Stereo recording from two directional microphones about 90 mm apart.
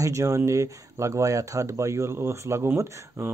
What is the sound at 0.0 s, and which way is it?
Speech, 35° right (ahead or behind).